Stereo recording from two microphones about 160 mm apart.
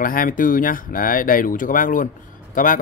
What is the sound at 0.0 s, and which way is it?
Speech, 60° left (ahead or behind).